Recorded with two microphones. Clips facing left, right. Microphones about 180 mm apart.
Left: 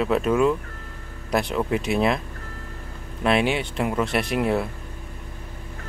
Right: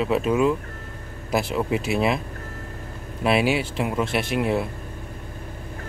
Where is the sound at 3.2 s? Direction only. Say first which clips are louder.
Right 1 dB; 5° right (ahead or behind).